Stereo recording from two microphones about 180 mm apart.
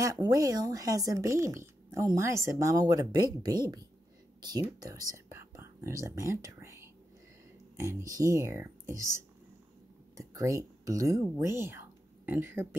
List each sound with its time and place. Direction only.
0.0 s speech: 20° right (ahead or behind)